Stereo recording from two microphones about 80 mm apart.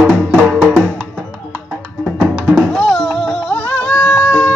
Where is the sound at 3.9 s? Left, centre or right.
Left.